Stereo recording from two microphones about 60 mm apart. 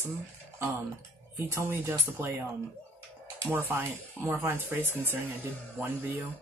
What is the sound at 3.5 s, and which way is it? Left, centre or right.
Speech, right.